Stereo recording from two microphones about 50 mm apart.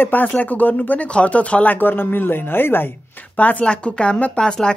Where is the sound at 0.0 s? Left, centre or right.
Left.